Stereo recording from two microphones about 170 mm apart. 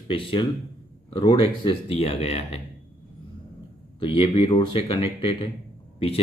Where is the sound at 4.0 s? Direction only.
30° left (ahead or behind).